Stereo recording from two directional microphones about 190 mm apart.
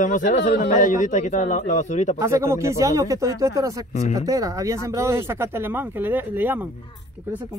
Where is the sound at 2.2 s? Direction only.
15° right (ahead or behind).